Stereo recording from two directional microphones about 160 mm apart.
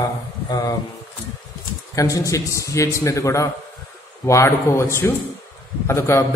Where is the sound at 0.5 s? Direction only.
20° left (ahead or behind).